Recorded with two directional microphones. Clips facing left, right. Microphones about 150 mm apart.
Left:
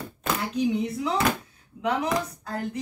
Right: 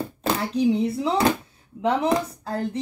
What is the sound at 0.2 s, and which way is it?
A woman's voice, 30° right (ahead or behind).